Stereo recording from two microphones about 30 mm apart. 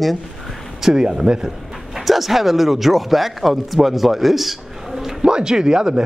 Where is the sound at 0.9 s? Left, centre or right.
Right.